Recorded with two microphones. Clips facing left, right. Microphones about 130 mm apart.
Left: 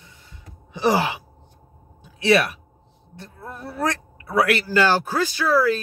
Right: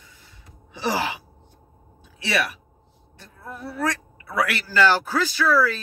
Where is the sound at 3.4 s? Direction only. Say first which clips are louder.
Left 1 dB; 40° left (ahead or behind).